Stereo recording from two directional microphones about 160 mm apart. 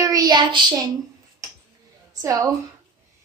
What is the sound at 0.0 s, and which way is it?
Child singing, 25° right (ahead or behind).